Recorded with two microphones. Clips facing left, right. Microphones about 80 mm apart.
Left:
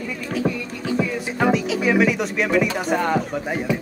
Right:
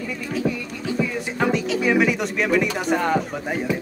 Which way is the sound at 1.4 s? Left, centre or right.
Centre.